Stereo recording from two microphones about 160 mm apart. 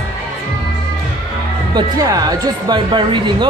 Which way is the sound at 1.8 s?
25° right (ahead or behind).